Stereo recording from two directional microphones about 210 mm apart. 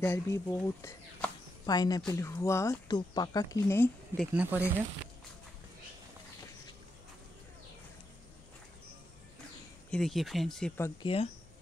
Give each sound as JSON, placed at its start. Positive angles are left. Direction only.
{"t": 0.0, "sound": "speech", "side_deg": 10}
{"t": 4.3, "sound": "speech", "side_deg": -5}
{"t": 9.8, "sound": "speech", "side_deg": 0}
{"t": 11.0, "sound": "speech", "side_deg": 25}